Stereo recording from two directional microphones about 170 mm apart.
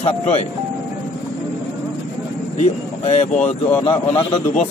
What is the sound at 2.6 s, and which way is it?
Speech, 40° left (ahead or behind).